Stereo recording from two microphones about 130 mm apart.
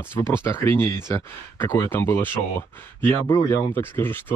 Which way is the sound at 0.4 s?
20° left (ahead or behind).